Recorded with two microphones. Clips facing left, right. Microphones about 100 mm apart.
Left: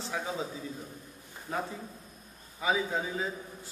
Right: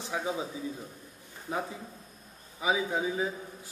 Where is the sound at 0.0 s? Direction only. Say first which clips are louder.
Right 2 dB; 15° right (ahead or behind).